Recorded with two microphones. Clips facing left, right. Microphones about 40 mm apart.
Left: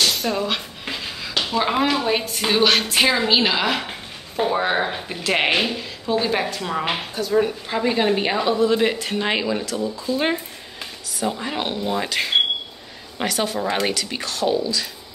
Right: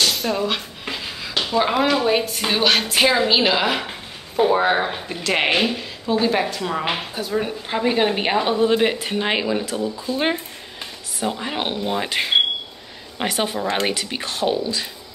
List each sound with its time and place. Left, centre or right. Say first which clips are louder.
0.0 s a sound: right 1 dB; centre
1.4 s a woman's voice: right 2 dB; centre
8.5 s speech: left 1 dB; right
8.8 s speech: right 1 dB; centre
13.2 s speech: even; right